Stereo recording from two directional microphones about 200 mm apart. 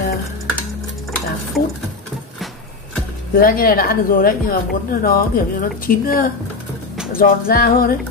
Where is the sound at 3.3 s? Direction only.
45° left (ahead or behind).